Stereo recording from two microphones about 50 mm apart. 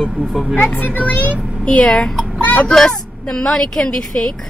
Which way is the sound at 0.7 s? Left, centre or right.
Left.